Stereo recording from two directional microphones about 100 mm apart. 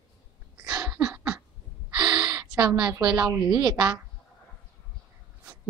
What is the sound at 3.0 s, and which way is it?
Child singing, 10° right (ahead or behind).